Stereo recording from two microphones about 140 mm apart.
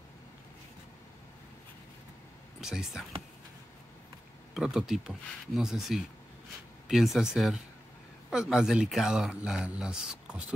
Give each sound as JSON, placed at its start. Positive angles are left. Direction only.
{"t": 2.6, "sound": "speech", "side_deg": -5}
{"t": 4.6, "sound": "speech", "side_deg": -5}